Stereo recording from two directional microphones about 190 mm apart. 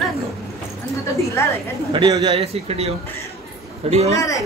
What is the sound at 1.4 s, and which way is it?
Speech, 15° left (ahead or behind).